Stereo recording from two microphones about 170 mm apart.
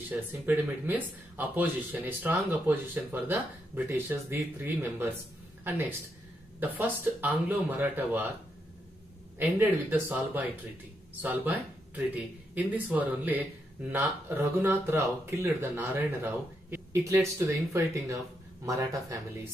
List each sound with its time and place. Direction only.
0.1 s speech: 10° right (ahead or behind)
9.4 s speech: 10° right (ahead or behind)